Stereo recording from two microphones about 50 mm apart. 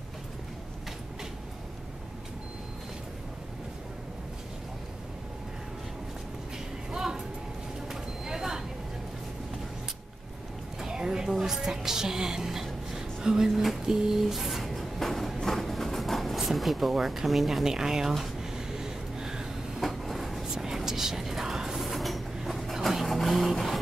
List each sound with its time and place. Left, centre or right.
6.9 s music: centre
7.9 s vehicle: centre
10.8 s a sound: centre
15.4 s speech: centre
18.8 s gasp: centre
19.8 s vehicle: centre
20.6 s train: centre